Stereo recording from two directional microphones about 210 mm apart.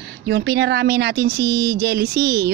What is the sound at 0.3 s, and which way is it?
A woman's voice, 55° right (ahead or behind).